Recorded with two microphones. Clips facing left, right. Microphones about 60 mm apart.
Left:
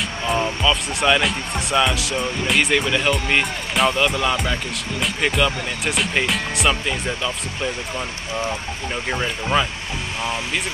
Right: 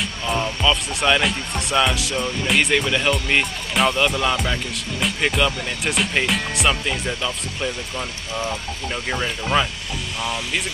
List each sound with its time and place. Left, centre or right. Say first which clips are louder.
0.3 s speech: left 1 dB; centre
9.1 s speech: even; centre